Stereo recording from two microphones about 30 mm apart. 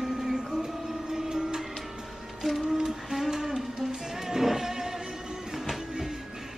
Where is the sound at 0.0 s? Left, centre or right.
Centre.